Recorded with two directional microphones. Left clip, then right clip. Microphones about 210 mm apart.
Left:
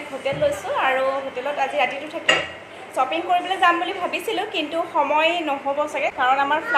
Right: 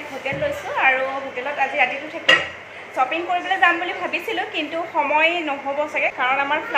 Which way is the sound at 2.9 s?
10° left (ahead or behind).